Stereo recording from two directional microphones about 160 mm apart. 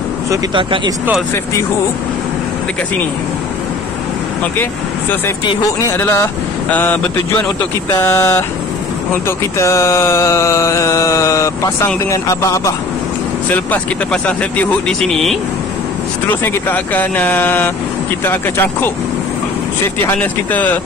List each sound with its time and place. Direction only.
0.6 s speech: 30° right (ahead or behind)
5.8 s speech: 15° left (ahead or behind)
13.5 s speech: 10° left (ahead or behind)
16.4 s speech: 10° left (ahead or behind)
20.2 s speech: 10° left (ahead or behind)